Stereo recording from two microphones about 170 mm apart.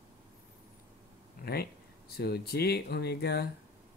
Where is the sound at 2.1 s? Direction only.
70° left (ahead or behind).